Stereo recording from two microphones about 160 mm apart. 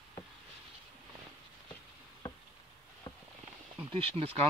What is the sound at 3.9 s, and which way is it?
Speech, 35° right (ahead or behind).